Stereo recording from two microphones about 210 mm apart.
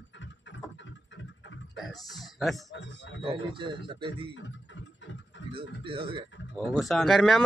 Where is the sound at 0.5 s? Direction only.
60° left (ahead or behind).